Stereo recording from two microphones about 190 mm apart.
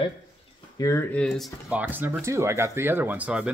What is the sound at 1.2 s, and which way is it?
Speech, centre (ahead or behind).